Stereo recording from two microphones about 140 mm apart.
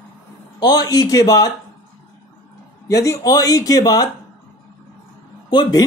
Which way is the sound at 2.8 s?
25° left (ahead or behind).